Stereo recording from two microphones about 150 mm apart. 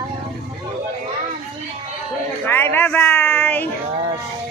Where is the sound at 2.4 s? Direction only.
15° left (ahead or behind).